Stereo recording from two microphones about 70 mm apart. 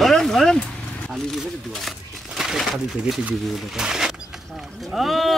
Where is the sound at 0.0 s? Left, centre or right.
Centre.